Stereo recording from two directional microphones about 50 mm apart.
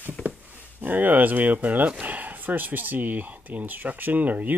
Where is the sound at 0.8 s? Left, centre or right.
Right.